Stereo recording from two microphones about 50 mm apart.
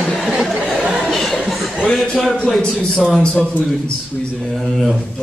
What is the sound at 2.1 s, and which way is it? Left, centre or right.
Speech, centre.